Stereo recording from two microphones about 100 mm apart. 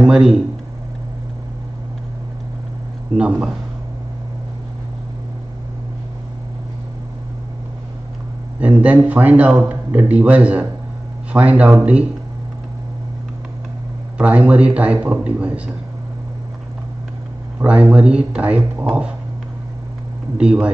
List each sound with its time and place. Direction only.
0.0 s a man's voice: 5° right (ahead or behind)
3.2 s a man's voice: 10° right (ahead or behind)
8.5 s a man's voice: 15° right (ahead or behind)
14.1 s a man's voice: 15° right (ahead or behind)
17.6 s a man's voice: 15° right (ahead or behind)
20.3 s a man's voice: 10° right (ahead or behind)